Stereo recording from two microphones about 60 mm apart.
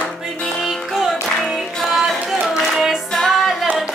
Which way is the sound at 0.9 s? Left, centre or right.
Centre.